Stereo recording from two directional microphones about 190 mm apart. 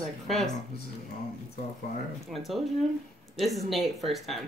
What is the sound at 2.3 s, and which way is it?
Speech, centre (ahead or behind).